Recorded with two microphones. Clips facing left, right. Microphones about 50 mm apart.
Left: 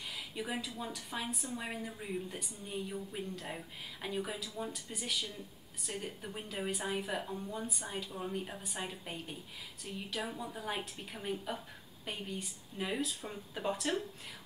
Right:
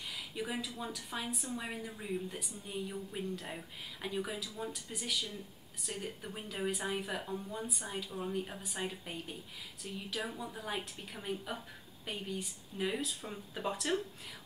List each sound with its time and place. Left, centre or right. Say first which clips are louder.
0.1 s speech: even; centre